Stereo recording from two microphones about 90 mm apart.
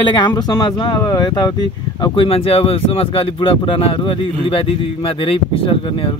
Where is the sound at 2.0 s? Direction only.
80° left.